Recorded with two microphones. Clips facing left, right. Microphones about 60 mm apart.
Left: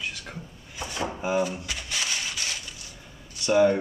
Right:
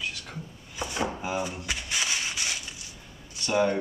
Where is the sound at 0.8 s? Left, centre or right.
Right.